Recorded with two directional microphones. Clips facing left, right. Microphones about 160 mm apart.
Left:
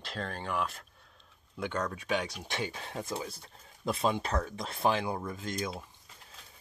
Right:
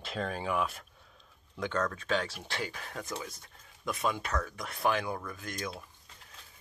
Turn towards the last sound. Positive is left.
turn(degrees=25)  # may be behind; listen again after turning